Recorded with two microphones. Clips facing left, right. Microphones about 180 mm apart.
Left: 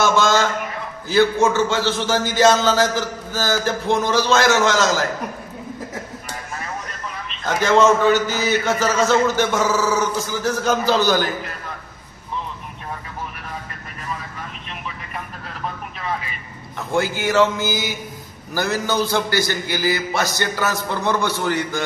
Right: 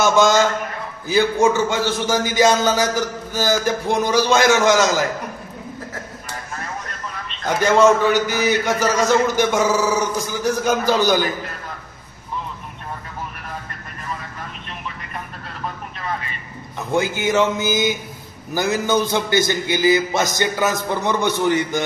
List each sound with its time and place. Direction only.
0.0 s a man's voice: 15° right (ahead or behind)
7.4 s a man's voice: 10° right (ahead or behind)
16.9 s a man's voice: 20° right (ahead or behind)